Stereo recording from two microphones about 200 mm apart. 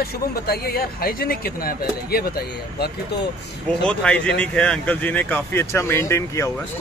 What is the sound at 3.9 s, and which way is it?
Speech, 5° left (ahead or behind).